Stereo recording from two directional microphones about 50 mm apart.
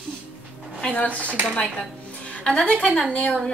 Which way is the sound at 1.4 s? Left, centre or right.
Centre.